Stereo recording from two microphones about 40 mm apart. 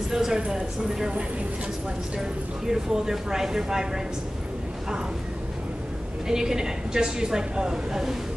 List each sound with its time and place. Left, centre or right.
0.1 s speech: centre
2.1 s speech: centre
6.2 s speech: centre